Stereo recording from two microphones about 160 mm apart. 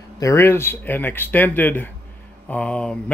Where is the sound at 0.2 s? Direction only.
20° left (ahead or behind).